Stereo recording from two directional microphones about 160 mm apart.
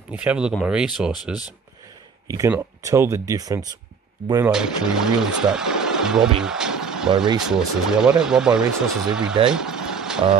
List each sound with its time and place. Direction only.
0.1 s speech: 10° right (ahead or behind)
2.2 s speech: 20° right (ahead or behind)
4.5 s speech: 5° right (ahead or behind)
9.5 s vehicle: 5° right (ahead or behind)